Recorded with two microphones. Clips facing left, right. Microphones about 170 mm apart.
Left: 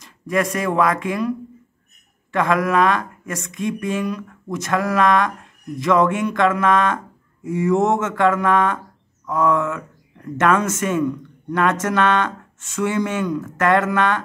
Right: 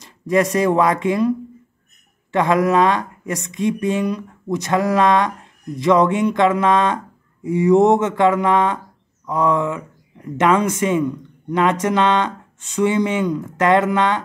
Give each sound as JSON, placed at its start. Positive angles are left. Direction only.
{"t": 0.0, "sound": "speech", "side_deg": -20}
{"t": 2.3, "sound": "speech", "side_deg": -20}